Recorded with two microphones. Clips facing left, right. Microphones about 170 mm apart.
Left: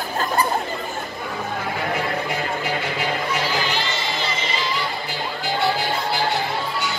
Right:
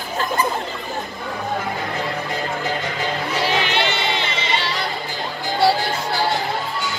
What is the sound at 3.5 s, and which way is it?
Music, 70° right (ahead or behind).